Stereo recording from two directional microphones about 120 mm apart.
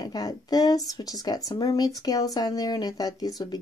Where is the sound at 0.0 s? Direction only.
35° left (ahead or behind).